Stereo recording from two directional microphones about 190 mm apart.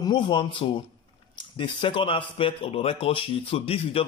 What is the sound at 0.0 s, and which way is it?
Speech, 25° left (ahead or behind).